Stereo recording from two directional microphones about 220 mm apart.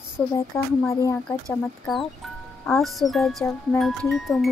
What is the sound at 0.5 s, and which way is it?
Speech, 15° left (ahead or behind).